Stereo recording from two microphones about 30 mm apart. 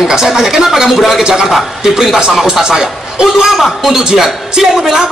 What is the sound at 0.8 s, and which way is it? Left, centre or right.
Speech, centre.